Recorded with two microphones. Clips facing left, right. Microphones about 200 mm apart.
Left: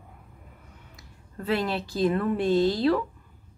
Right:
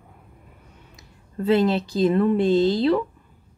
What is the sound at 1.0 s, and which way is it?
Speech, 20° right (ahead or behind).